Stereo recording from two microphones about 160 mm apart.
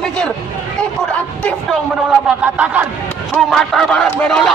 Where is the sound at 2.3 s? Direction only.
10° right (ahead or behind).